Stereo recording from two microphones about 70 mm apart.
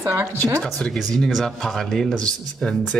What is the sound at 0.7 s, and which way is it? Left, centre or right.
Speech, centre.